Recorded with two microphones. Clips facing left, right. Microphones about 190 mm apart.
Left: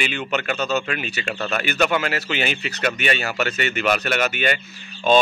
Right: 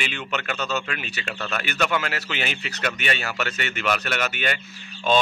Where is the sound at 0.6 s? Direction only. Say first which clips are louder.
Left 5 dB; 40° left (ahead or behind).